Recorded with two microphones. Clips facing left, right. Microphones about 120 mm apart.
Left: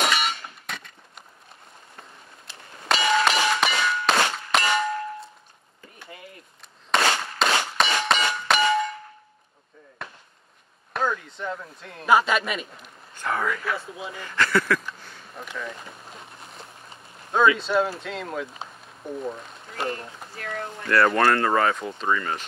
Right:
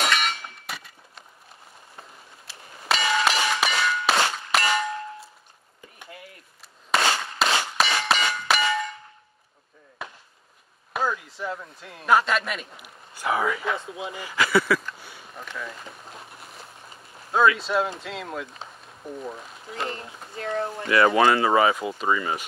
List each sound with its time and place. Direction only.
0.0 s a sound: 5° left (ahead or behind)
2.4 s clang: centre (ahead or behind)
6.9 s a sound: 5° right (ahead or behind)
8.5 s clang: centre (ahead or behind)
10.0 s chop: centre (ahead or behind)
10.9 s speech: 5° right (ahead or behind)
13.7 s speech: 25° right (ahead or behind)
14.1 s speech: 10° right (ahead or behind)
15.0 s a sound: 5° right (ahead or behind)
17.6 s speech: centre (ahead or behind)
20.3 s speech: 25° right (ahead or behind)
20.8 s speech: 5° right (ahead or behind)